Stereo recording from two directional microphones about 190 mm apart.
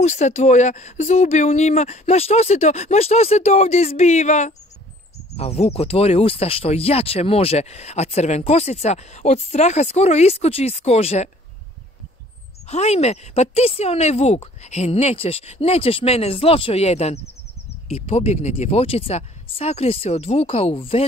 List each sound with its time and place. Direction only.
0.0 s speech: 35° left (ahead or behind)
12.6 s speech: 35° left (ahead or behind)